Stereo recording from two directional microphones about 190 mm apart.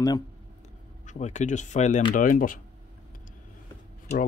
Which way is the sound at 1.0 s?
40° left (ahead or behind).